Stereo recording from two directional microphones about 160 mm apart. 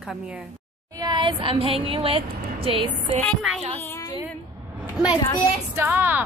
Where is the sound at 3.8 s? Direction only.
20° left (ahead or behind).